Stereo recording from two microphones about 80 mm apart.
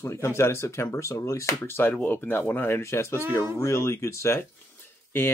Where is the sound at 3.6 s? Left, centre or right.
Left.